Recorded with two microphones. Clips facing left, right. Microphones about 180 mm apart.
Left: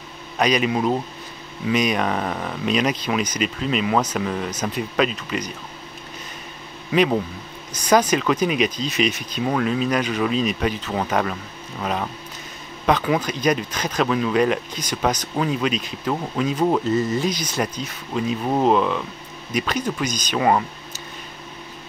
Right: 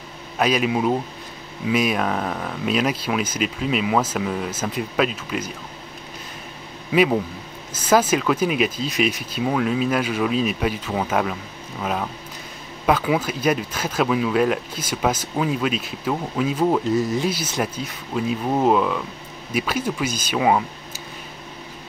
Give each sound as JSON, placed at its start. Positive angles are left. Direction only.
{"t": 0.4, "sound": "speech", "side_deg": -5}
{"t": 6.9, "sound": "speech", "side_deg": -5}